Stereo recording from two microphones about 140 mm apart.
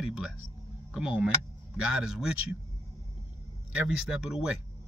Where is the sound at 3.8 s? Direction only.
5° right (ahead or behind).